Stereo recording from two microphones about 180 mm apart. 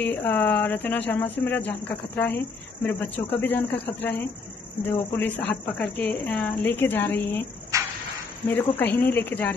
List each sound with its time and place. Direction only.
0.0 s speech: 10° left (ahead or behind)
5.5 s speech: 10° left (ahead or behind)
7.7 s a sound: 20° right (ahead or behind)
8.5 s speech: 10° left (ahead or behind)